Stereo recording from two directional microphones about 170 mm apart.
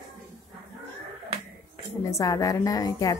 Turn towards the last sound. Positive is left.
turn(degrees=20)  # may be behind; listen again after turning